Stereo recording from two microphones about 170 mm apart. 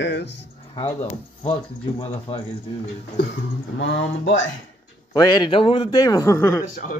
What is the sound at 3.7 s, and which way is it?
Speech, 90° left.